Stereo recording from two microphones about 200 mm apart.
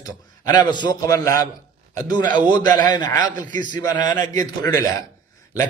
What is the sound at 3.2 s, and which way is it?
Speech, 40° right (ahead or behind).